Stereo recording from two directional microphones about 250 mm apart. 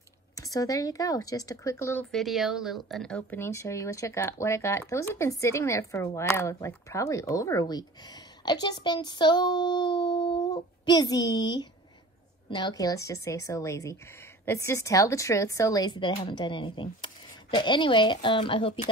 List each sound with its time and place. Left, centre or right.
0.4 s speech: centre